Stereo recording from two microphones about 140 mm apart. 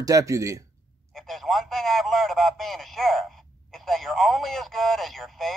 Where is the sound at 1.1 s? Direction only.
Centre (ahead or behind).